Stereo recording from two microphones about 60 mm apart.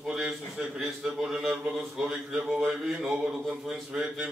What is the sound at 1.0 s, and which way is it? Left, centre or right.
Mantra, centre.